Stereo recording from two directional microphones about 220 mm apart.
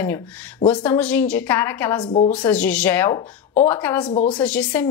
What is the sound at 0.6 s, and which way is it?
Speech, 20° left (ahead or behind).